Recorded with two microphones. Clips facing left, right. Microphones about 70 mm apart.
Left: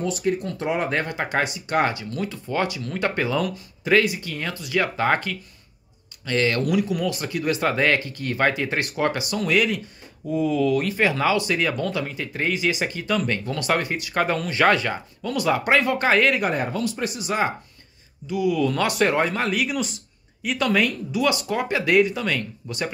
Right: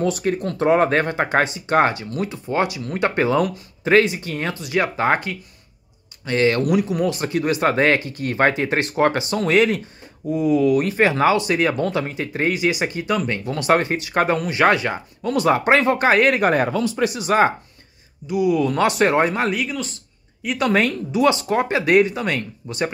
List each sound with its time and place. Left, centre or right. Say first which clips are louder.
0.0 s speech: right 3 dB; right
1.0 s speech: right 5 dB; right
11.0 s speech: right 4 dB; right
14.4 s speech: right 2 dB; centre
16.4 s speech: right 6 dB; right
17.2 s speech: right 7 dB; right
18.2 s speech: right 3 dB; centre
19.5 s speech: even; centre
20.5 s speech: right 3 dB; right